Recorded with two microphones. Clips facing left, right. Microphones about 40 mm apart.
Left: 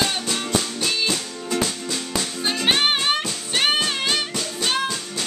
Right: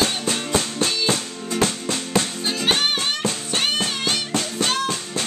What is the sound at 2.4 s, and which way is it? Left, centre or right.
Music, centre.